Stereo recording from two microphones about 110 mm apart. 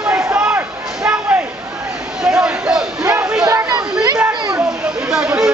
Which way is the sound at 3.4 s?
35° right (ahead or behind).